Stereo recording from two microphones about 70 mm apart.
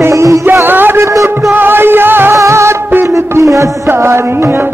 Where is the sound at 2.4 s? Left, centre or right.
Right.